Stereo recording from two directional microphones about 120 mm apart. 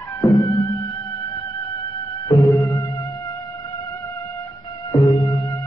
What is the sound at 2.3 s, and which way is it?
Music, 25° left (ahead or behind).